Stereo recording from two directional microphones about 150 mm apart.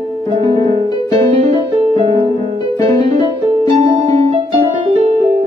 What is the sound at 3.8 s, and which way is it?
Music, 45° right (ahead or behind).